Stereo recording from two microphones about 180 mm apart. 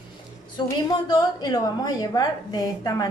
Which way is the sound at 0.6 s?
25° left (ahead or behind).